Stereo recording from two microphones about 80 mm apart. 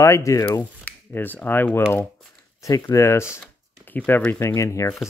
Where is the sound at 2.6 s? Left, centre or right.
Left.